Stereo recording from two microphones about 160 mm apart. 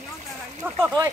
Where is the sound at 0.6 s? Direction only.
15° right (ahead or behind).